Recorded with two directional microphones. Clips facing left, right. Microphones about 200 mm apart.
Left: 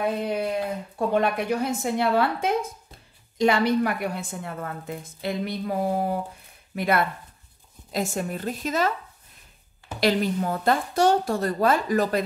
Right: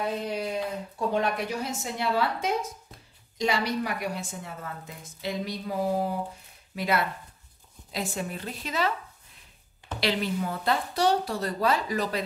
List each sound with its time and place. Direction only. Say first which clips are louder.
0.3 s a woman's voice: left 4 dB; 55° left (ahead or behind)
9.9 s a woman's voice: left 5 dB; 45° left (ahead or behind)